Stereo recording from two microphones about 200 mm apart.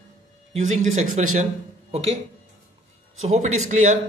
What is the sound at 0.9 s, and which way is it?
Speech, 35° right (ahead or behind).